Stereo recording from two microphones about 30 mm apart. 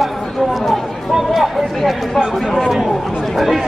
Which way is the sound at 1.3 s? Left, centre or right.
Centre.